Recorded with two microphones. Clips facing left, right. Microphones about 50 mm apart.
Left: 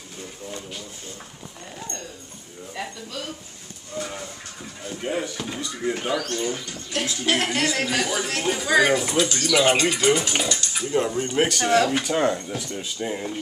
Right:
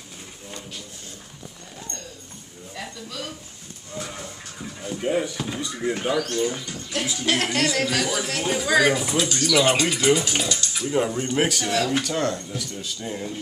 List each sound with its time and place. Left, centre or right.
2.7 s a sound: centre
3.9 s a man's voice: centre
11.6 s speech: left
11.9 s a man's voice: centre
12.4 s speech: left